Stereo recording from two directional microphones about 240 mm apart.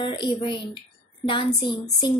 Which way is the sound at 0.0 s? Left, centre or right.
Centre.